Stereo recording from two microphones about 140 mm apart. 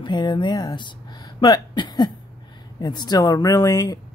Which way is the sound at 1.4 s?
30° left (ahead or behind).